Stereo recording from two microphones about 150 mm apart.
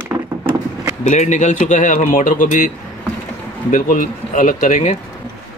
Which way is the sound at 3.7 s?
60° left (ahead or behind).